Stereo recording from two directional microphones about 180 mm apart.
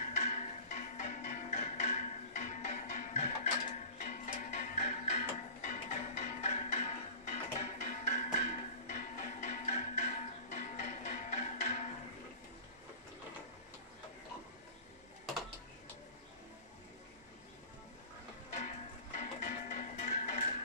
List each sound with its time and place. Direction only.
0.0 s music: 40° left (ahead or behind)
18.6 s music: 40° left (ahead or behind)